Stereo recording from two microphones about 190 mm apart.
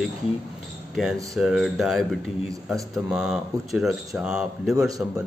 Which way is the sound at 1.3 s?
Centre (ahead or behind).